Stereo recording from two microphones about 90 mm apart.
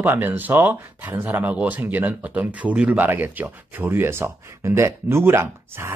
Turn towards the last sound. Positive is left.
turn(degrees=-30)  # may be behind; listen again after turning